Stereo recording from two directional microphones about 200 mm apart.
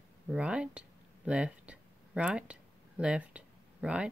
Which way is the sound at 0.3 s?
5° right (ahead or behind).